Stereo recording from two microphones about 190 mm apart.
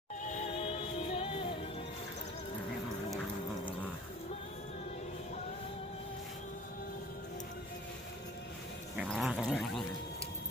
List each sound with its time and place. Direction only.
0.2 s music: 40° left (ahead or behind)
3.1 s a sound: centre (ahead or behind)
8.9 s cat: centre (ahead or behind)